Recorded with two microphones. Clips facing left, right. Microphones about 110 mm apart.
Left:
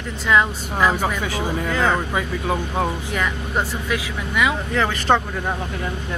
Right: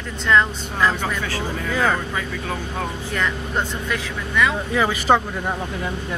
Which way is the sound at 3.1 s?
5° left (ahead or behind).